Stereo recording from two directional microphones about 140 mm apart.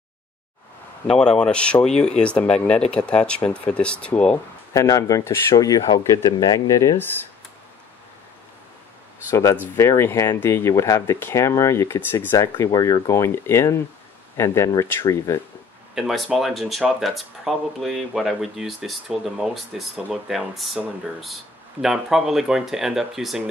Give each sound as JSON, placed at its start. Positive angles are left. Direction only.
{"t": 1.0, "sound": "speech", "side_deg": 5}
{"t": 4.7, "sound": "speech", "side_deg": 25}
{"t": 9.3, "sound": "speech", "side_deg": 20}
{"t": 15.9, "sound": "speech", "side_deg": 0}